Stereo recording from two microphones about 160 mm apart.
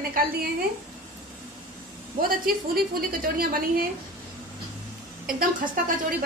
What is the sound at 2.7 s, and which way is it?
A woman's voice, 65° right (ahead or behind).